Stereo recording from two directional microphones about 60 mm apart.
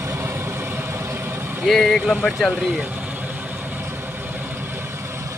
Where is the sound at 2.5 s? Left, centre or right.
Right.